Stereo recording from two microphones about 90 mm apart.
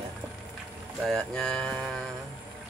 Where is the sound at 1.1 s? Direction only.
5° left (ahead or behind).